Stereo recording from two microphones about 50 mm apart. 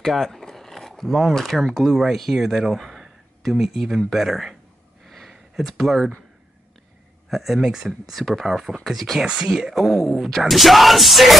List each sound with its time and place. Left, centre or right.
0.0 s speech: centre
5.0 s a sound: centre
5.3 s speech: centre
7.2 s speech: centre
8.2 s speech: centre
9.2 s speech: centre
9.6 s speech: centre